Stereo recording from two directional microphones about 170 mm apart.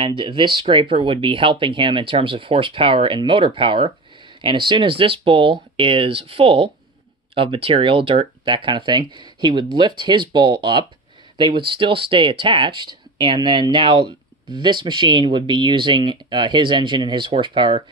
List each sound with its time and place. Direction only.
0.0 s speech: 30° right (ahead or behind)